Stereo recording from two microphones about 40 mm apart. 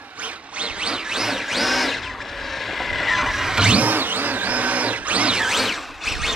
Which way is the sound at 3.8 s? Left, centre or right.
Right.